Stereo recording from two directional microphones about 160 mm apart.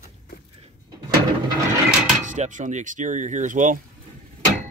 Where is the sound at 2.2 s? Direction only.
50° right (ahead or behind).